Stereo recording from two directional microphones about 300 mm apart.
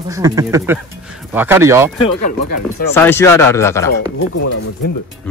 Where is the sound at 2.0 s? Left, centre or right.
Left.